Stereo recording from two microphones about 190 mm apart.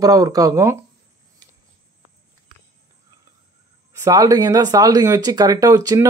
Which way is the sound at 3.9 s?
20° right (ahead or behind).